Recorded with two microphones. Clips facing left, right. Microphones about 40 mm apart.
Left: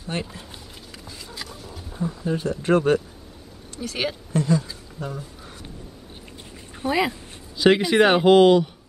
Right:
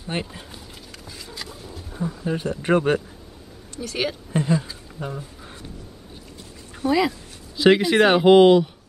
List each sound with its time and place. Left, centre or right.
0.0 s speech: centre
1.0 s a sound: centre
1.5 s speech: centre
3.8 s speech: centre
4.3 s a sound: right
6.8 s speech: left
7.5 s speech: centre